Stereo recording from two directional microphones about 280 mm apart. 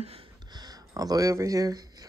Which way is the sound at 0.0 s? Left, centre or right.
Centre.